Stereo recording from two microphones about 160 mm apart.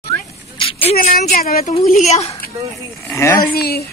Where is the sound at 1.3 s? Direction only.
65° left (ahead or behind).